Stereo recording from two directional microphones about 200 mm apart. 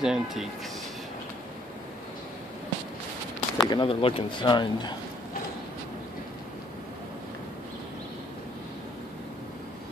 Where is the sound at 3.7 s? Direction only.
25° left (ahead or behind).